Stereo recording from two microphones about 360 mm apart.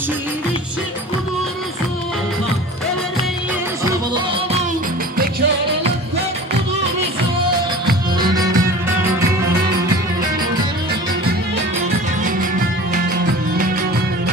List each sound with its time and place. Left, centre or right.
4.1 s music: centre
8.2 s music: centre